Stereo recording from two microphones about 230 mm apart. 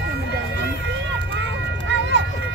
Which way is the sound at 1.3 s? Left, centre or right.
Right.